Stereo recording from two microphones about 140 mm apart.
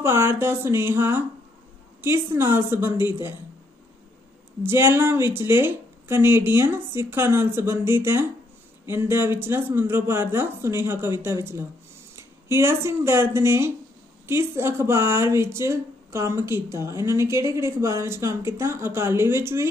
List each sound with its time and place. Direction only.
0.0 s a woman's voice: 20° right (ahead or behind)
4.6 s a woman's voice: 15° right (ahead or behind)